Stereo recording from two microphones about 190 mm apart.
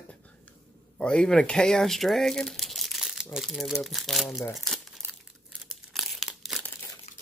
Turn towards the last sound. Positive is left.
turn(degrees=0)  # may be behind; listen again after turning